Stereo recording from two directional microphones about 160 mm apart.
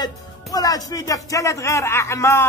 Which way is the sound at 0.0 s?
25° left (ahead or behind).